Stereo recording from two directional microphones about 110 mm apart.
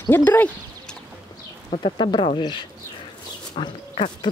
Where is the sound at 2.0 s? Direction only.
45° left (ahead or behind).